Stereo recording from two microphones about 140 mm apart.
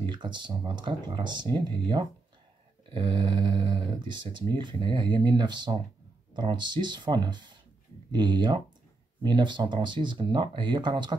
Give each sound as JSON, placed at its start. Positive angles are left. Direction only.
{"t": 0.0, "sound": "speech", "side_deg": -35}